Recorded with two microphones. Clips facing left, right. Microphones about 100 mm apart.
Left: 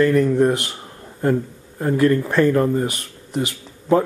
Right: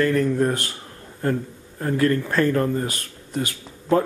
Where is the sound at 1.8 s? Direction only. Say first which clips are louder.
Left 4 dB; 20° left (ahead or behind).